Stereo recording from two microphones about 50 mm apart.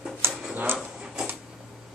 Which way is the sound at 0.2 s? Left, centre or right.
Right.